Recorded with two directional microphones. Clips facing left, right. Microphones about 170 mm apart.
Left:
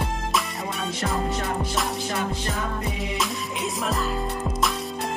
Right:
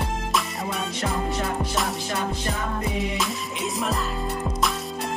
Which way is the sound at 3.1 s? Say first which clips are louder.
Even; centre (ahead or behind).